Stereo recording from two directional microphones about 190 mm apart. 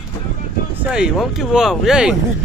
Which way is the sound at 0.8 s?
5° right (ahead or behind).